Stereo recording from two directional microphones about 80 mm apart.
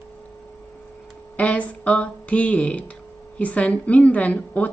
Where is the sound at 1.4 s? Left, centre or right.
Centre.